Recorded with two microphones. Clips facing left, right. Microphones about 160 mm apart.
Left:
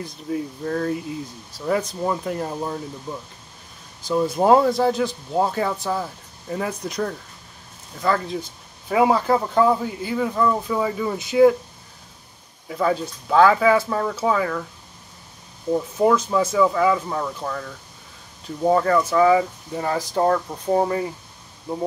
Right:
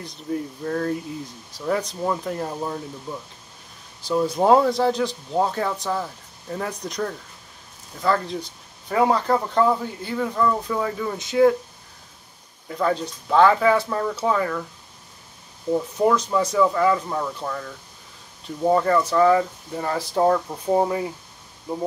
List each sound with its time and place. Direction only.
0.0 s speech: centre (ahead or behind)
12.6 s speech: 5° left (ahead or behind)
16.0 s speech: 5° left (ahead or behind)